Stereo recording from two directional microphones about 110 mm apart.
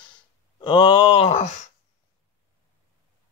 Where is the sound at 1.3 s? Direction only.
80° left.